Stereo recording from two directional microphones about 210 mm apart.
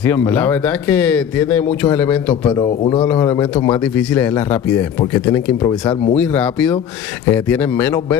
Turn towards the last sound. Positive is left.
turn(degrees=5)  # may be behind; listen again after turning